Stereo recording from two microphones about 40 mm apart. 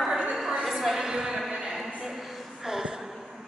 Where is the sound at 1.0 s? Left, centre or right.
Centre.